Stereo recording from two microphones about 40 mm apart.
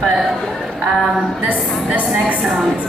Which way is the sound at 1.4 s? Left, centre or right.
Right.